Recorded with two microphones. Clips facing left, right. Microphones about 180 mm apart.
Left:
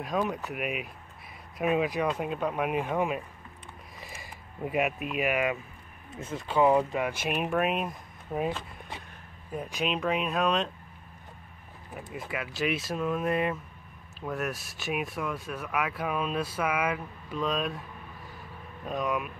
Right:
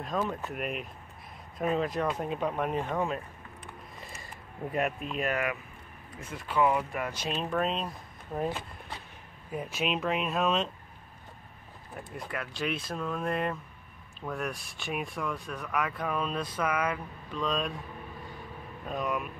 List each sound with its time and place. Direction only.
0.0 s speech: 10° left (ahead or behind)
6.1 s speech: 25° left (ahead or behind)
9.5 s speech: 5° right (ahead or behind)
12.1 s speech: 5° left (ahead or behind)
18.9 s speech: centre (ahead or behind)